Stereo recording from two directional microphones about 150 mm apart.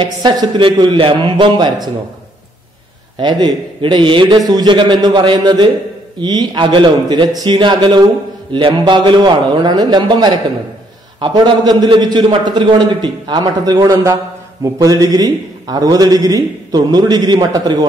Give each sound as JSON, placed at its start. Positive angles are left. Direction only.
{"t": 0.0, "sound": "a man's voice", "side_deg": -30}
{"t": 3.2, "sound": "a man's voice", "side_deg": -30}